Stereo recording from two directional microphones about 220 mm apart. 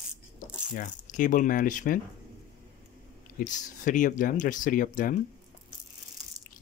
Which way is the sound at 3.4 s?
35° left (ahead or behind).